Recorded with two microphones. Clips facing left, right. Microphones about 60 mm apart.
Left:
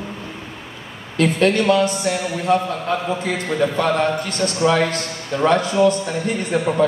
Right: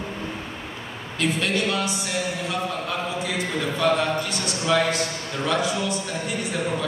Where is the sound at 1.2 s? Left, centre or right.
Left.